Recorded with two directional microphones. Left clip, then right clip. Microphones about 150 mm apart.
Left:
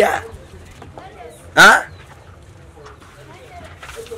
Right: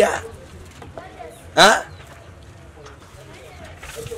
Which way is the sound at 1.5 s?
25° left (ahead or behind).